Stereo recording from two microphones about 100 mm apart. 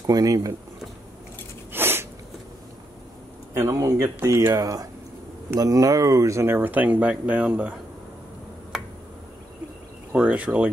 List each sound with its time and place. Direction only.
0.0 s speech: 35° right (ahead or behind)
1.7 s a sound: 25° right (ahead or behind)
3.5 s speech: 30° right (ahead or behind)
4.6 s speech: 40° right (ahead or behind); by 7.7 s 10° right (ahead or behind)
10.1 s speech: 10° right (ahead or behind)